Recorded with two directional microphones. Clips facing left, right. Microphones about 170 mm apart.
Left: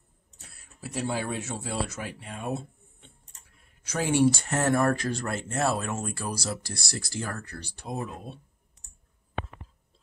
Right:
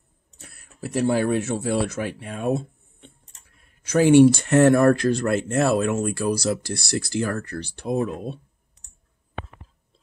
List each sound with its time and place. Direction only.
0.4 s speech: 55° right (ahead or behind)